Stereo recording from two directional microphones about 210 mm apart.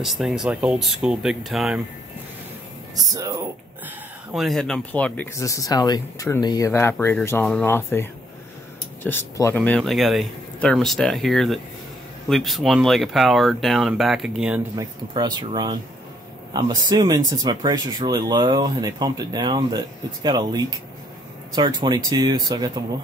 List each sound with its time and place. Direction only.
0.0 s speech: centre (ahead or behind)
3.0 s speech: 15° right (ahead or behind)
4.3 s speech: centre (ahead or behind)
14.8 s speech: 20° right (ahead or behind)